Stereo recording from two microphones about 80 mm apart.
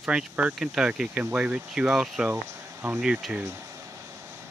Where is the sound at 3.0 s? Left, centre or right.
Centre.